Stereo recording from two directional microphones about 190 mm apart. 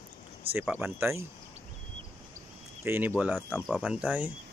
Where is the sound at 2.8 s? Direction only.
10° right (ahead or behind).